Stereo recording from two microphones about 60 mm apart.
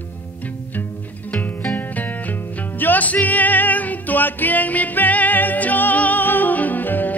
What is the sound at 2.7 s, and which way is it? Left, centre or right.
Music, left.